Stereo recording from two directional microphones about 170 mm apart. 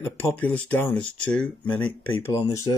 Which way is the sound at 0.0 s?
10° left (ahead or behind).